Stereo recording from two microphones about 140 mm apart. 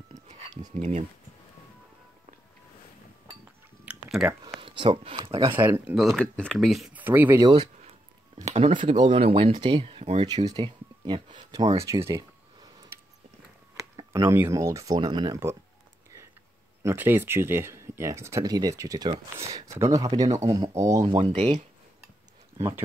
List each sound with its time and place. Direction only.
0.7 s speech: 55° right (ahead or behind)
3.8 s chewing: 5° right (ahead or behind)
4.6 s speech: 40° right (ahead or behind)
5.6 s speech: 15° right (ahead or behind)
5.9 s speech: centre (ahead or behind)
7.0 s speech: 15° right (ahead or behind)
7.5 s a sound: 45° right (ahead or behind)
8.4 s speech: 55° right (ahead or behind)
8.9 s speech: 35° right (ahead or behind)
10.2 s speech: 30° right (ahead or behind)
13.7 s speech: 25° right (ahead or behind)
16.8 s speech: 15° right (ahead or behind)
21.2 s speech: 50° right (ahead or behind)
22.6 s speech: 20° right (ahead or behind)